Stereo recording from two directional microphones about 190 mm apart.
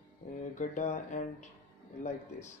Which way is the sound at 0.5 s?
40° left (ahead or behind).